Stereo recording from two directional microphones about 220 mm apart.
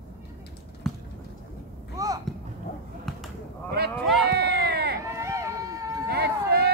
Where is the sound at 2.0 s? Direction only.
15° right (ahead or behind).